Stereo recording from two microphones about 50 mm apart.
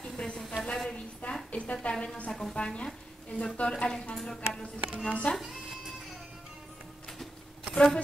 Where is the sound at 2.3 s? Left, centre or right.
Centre.